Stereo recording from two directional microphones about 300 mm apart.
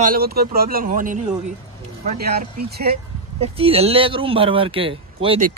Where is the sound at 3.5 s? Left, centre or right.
Centre.